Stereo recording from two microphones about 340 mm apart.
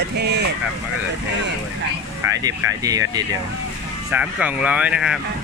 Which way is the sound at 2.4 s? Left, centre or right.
Centre.